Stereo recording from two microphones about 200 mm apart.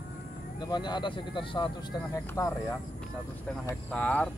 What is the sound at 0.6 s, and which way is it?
Speech, 20° left (ahead or behind).